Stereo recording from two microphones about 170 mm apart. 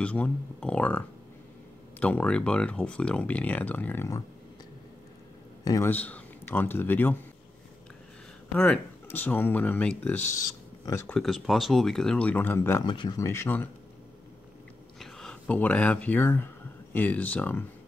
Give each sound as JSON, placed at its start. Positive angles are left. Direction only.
{"t": 0.0, "sound": "speech", "side_deg": 5}
{"t": 5.6, "sound": "speech", "side_deg": 20}
{"t": 8.5, "sound": "speech", "side_deg": 10}
{"t": 12.8, "sound": "speech", "side_deg": 25}
{"t": 15.0, "sound": "speech", "side_deg": 5}